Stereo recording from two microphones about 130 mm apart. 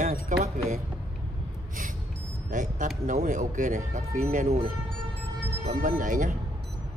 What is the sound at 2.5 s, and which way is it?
Speech, 80° right.